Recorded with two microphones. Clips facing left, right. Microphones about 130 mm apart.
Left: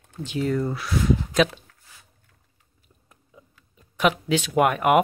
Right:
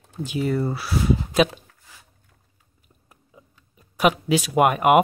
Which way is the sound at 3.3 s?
10° right (ahead or behind).